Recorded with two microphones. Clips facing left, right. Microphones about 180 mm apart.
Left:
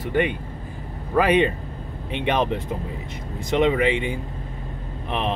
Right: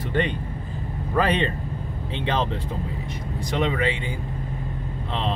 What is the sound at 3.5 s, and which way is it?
Speech, 20° left (ahead or behind).